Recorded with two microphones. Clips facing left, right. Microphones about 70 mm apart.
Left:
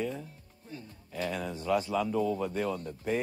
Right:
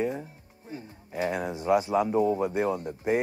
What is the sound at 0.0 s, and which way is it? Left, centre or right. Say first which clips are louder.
Music: right 5 dB; right.